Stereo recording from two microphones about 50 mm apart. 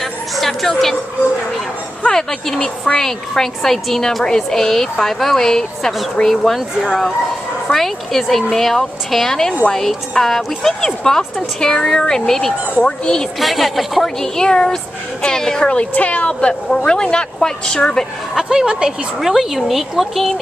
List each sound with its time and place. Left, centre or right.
0.4 s a woman's voice: centre
2.0 s a woman's voice: centre
13.4 s speech: centre
14.0 s a woman's voice: centre
15.7 s a woman's voice: left
18.3 s a woman's voice: centre